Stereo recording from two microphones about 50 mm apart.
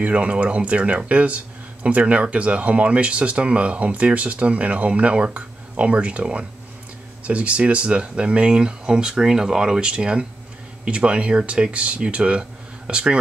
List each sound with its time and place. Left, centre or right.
0.0 s speech: right